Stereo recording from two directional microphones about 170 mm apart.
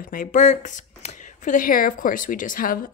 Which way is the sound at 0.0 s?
50° left (ahead or behind).